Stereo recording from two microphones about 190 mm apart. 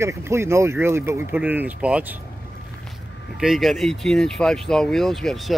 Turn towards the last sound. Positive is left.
turn(degrees=0)  # may be behind; listen again after turning